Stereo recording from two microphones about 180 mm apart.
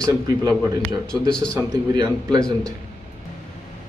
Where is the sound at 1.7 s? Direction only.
20° right (ahead or behind).